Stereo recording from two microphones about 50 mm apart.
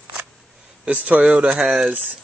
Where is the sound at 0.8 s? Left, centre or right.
Right.